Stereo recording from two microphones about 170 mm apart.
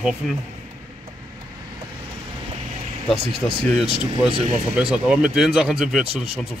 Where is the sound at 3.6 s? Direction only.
Centre (ahead or behind).